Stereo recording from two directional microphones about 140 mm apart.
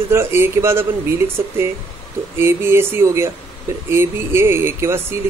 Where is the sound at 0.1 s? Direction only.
15° right (ahead or behind).